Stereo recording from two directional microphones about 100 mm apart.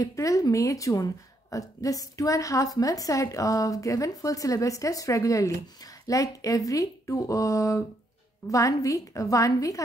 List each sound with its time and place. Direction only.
0.0 s a woman's voice: 35° left (ahead or behind)